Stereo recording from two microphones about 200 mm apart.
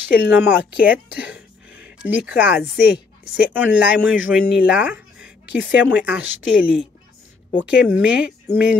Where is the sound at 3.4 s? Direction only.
10° right (ahead or behind).